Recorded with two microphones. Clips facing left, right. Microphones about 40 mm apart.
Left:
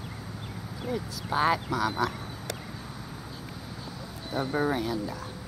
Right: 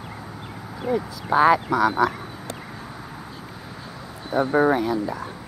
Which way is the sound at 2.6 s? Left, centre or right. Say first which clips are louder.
Right 4 dB; right.